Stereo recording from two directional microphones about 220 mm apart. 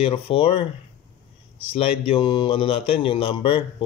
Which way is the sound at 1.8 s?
25° left (ahead or behind).